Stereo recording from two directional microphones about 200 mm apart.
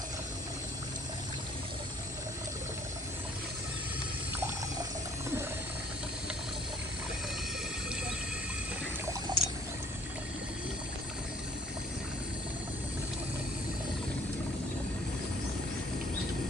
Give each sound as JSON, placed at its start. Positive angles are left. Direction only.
{"t": 9.3, "sound": "pour", "side_deg": -20}